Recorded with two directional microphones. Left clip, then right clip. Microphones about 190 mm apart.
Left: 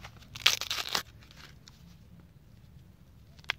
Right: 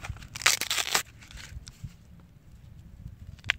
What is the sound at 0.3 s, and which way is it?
Tearing, 15° right (ahead or behind).